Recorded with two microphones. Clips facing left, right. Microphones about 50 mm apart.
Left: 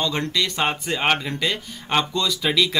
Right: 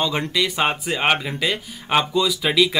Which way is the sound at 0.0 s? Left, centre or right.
Centre.